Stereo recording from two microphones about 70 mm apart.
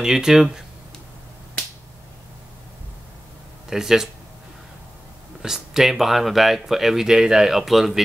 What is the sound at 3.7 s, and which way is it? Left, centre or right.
Speech, centre.